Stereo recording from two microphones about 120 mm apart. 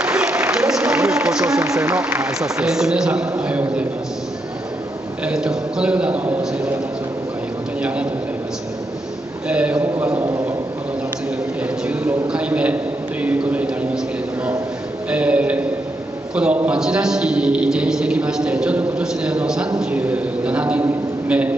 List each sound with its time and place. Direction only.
0.0 s a sound: 10° right (ahead or behind)
1.7 s a man's voice: 25° right (ahead or behind)
2.2 s a man's voice: 5° right (ahead or behind)
5.2 s a man's voice: 5° right (ahead or behind)
9.5 s a man's voice: 10° right (ahead or behind)
10.0 s a man's voice: 20° right (ahead or behind)
11.9 s a man's voice: 10° right (ahead or behind)
15.0 s a man's voice: 10° right (ahead or behind)